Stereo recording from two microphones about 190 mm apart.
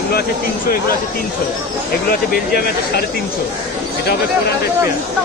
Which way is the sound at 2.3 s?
55° left (ahead or behind).